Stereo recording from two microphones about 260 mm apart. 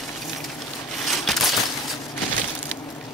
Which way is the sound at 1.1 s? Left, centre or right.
Centre.